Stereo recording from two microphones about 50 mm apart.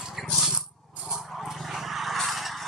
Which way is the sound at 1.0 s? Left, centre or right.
Centre.